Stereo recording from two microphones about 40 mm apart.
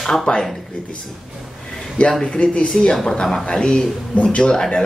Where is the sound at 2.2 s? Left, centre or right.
Left.